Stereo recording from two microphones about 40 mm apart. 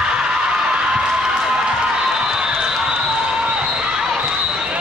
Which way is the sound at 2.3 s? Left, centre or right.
Centre.